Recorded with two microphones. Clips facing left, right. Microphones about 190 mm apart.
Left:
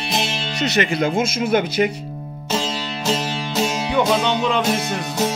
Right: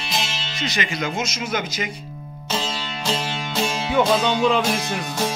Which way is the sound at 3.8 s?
5° right (ahead or behind).